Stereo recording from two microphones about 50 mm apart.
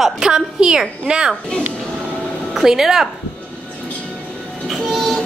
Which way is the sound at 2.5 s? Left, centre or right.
Centre.